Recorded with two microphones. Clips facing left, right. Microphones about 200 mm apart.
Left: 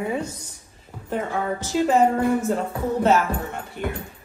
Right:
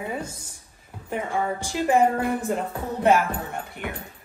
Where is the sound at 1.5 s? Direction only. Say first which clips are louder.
Left 3 dB; 15° right (ahead or behind).